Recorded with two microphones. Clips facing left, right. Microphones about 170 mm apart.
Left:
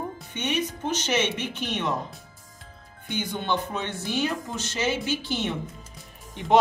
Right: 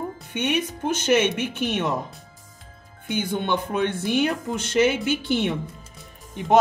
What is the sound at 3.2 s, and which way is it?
Speech, 50° right (ahead or behind).